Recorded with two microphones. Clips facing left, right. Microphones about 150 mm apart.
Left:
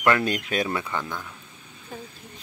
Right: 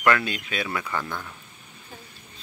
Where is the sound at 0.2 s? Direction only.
45° left (ahead or behind).